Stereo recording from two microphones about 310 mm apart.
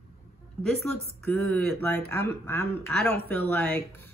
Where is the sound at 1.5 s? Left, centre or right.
Centre.